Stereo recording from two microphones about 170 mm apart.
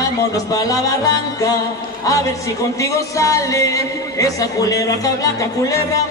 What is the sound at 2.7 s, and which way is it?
Speech, 20° left (ahead or behind).